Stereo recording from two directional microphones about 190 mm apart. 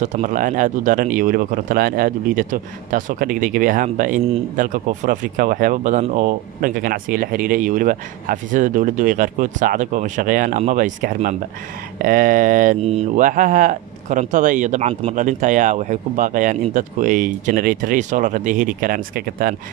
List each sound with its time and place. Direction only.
0.0 s speech: 40° right (ahead or behind)